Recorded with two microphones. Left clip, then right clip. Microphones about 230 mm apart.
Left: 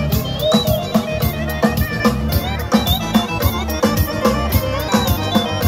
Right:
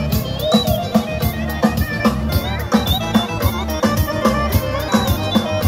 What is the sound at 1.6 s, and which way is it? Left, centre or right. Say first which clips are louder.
Music: left 1 dB; left.